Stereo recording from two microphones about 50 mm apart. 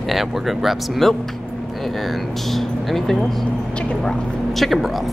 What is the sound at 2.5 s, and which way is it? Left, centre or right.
Speech, centre.